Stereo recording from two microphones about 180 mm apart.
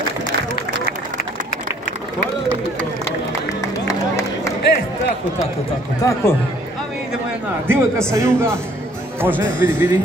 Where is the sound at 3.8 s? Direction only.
15° left (ahead or behind).